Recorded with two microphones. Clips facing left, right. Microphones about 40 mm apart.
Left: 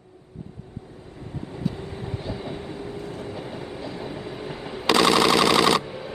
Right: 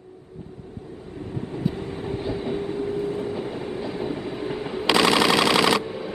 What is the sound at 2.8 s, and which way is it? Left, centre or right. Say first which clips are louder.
Train: right 7 dB; right.